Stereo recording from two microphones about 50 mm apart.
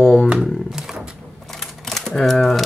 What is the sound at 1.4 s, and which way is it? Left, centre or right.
Typewriter, centre.